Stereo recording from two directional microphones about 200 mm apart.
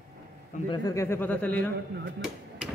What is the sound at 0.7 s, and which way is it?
A man's voice, 15° left (ahead or behind).